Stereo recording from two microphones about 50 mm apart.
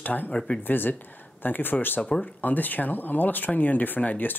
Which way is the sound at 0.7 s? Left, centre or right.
Left.